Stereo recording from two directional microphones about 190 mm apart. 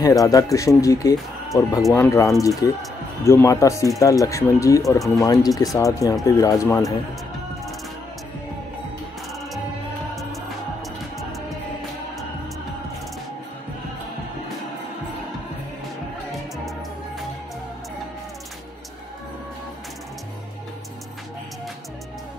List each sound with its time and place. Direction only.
0.0 s speech: 20° left (ahead or behind)
16.3 s music: centre (ahead or behind)